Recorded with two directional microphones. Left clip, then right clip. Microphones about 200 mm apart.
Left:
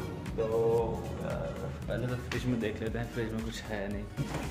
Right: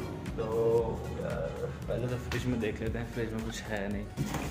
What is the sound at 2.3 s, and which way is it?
Speech, 5° left (ahead or behind).